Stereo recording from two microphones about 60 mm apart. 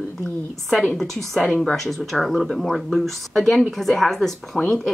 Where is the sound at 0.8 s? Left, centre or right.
Centre.